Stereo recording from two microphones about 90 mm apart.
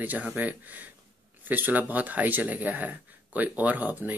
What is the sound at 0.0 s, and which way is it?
Speech, 15° right (ahead or behind).